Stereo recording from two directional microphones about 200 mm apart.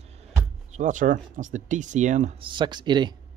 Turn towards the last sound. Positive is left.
turn(degrees=-20)  # may be behind; listen again after turning